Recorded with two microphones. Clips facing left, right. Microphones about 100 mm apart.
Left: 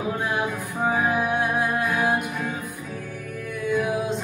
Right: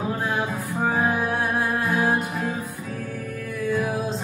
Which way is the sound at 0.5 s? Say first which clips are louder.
Right 1 dB; 20° right (ahead or behind).